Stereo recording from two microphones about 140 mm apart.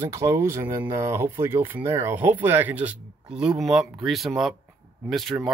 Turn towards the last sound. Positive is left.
turn(degrees=0)  # may be behind; listen again after turning